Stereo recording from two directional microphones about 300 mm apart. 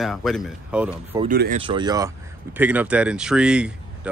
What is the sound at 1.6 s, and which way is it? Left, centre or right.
Speech, centre.